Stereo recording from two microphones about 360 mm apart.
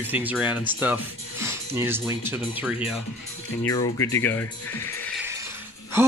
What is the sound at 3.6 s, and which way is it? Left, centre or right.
Speech, centre.